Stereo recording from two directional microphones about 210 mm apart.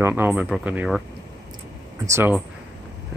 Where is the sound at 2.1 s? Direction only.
10° right (ahead or behind).